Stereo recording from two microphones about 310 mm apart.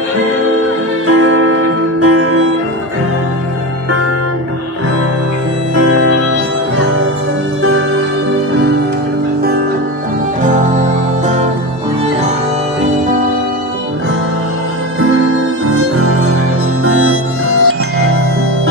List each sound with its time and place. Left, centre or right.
1.0 s music: right
5.8 s music: right
15.0 s music: right